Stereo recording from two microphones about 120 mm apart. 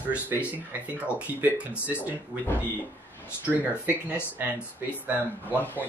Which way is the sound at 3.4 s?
15° right (ahead or behind).